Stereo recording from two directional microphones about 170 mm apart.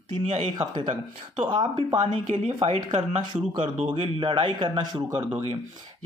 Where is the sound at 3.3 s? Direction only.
25° right (ahead or behind).